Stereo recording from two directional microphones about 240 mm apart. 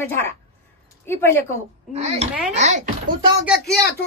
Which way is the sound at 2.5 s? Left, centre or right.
Right.